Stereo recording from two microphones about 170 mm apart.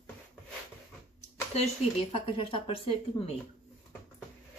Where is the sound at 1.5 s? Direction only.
35° left (ahead or behind).